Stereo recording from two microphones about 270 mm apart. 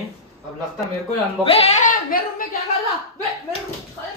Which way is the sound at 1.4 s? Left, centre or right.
Left.